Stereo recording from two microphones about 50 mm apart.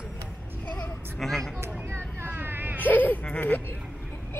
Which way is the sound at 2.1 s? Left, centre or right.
Right.